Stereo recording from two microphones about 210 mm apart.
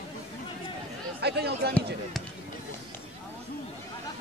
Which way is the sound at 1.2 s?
50° right (ahead or behind).